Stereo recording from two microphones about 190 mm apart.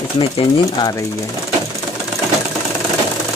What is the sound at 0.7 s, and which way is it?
Speech, 20° left (ahead or behind).